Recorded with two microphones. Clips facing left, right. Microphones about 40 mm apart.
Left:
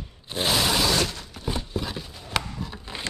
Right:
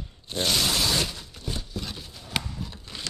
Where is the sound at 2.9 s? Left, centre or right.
Left.